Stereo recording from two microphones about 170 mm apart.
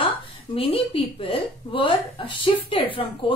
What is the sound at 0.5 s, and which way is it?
A woman's voice, 35° left (ahead or behind).